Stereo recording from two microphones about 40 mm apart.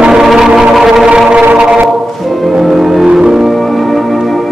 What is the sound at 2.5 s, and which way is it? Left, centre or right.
Music, centre.